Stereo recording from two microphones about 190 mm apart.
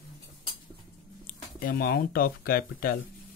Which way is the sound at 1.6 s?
50° left (ahead or behind).